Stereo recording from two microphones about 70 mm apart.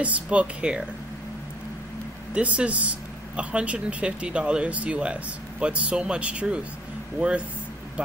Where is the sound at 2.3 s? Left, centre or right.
Centre.